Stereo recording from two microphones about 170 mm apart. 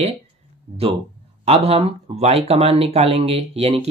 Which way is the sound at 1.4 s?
35° right (ahead or behind).